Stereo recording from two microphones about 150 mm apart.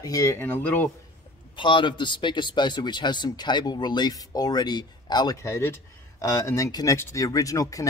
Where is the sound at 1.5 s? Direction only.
35° left (ahead or behind).